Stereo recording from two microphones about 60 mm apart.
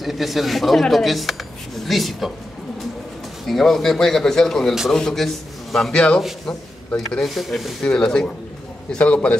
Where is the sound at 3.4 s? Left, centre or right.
Centre.